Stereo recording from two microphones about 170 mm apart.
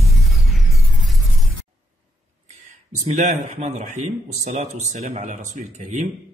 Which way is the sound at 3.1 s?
45° right (ahead or behind).